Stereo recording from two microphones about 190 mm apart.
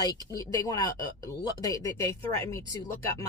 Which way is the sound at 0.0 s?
20° left (ahead or behind).